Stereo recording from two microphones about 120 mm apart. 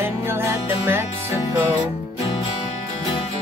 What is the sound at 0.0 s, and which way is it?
Music, 20° right (ahead or behind).